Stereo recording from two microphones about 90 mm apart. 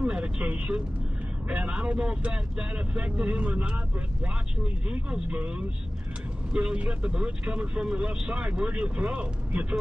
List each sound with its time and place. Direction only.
0.0 s vehicle: 15° right (ahead or behind)
1.5 s speech: 15° right (ahead or behind)
4.8 s speech: 15° right (ahead or behind)